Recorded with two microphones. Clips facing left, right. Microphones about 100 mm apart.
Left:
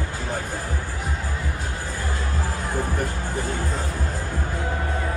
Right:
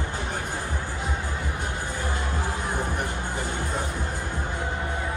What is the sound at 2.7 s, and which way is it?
Music, 20° right (ahead or behind).